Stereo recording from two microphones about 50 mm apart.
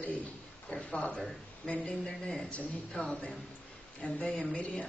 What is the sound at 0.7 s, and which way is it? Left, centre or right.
Speech, left.